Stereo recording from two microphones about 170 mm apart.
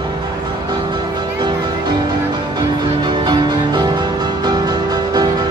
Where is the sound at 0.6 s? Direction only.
25° right (ahead or behind).